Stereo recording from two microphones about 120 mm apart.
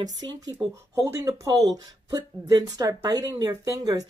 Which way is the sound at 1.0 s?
30° right (ahead or behind).